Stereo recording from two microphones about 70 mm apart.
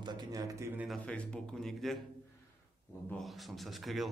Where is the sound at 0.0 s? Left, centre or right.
Right.